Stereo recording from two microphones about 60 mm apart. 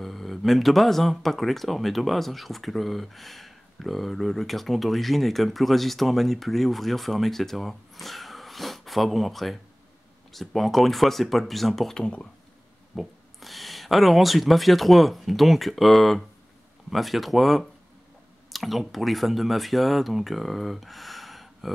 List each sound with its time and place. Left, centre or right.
0.0 s speech: centre